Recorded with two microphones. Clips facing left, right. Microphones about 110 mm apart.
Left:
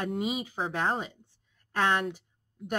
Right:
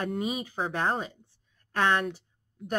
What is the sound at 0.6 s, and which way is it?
Speech, centre (ahead or behind).